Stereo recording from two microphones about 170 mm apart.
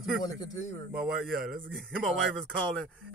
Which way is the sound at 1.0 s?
Centre (ahead or behind).